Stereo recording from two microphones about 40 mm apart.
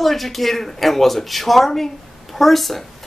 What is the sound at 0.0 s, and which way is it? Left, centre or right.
Speech, centre.